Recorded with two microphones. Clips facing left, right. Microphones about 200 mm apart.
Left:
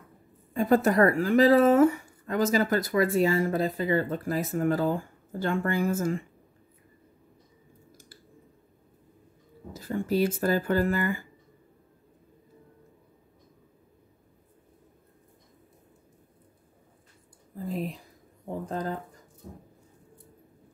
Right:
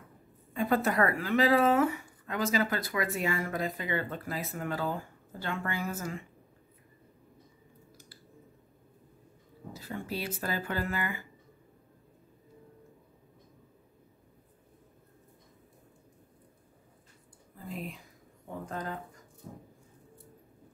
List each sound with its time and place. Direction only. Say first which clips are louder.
0.6 s speech: left 6 dB; 45° left (ahead or behind)
9.8 s speech: left 11 dB; 50° left (ahead or behind)
17.7 s speech: left 5 dB; 35° left (ahead or behind)